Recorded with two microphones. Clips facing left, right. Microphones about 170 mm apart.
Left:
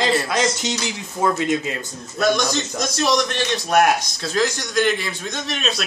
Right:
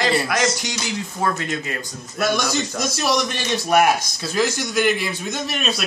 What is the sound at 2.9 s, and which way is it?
A man's voice, 5° right (ahead or behind).